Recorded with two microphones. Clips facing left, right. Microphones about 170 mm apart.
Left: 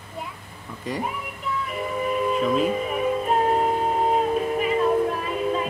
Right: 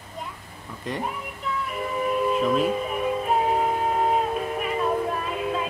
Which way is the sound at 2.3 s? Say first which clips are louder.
Left 1 dB; centre (ahead or behind).